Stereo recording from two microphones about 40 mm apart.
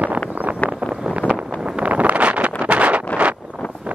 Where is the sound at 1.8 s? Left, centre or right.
Right.